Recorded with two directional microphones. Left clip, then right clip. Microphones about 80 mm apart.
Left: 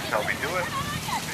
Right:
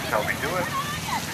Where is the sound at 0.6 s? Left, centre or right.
Left.